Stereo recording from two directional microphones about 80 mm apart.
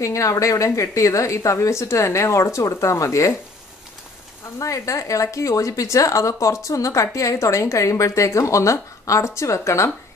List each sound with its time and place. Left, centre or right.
0.0 s a woman's voice: left
4.6 s a woman's voice: left